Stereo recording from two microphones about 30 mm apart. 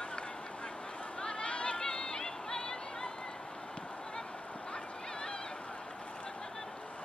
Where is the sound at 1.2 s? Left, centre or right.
Left.